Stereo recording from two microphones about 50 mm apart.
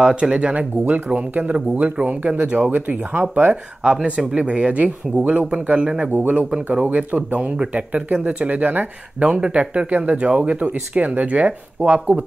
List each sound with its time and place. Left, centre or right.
0.0 s speech: right
3.1 s speech: right
3.8 s speech: centre
6.1 s speech: right
9.2 s speech: right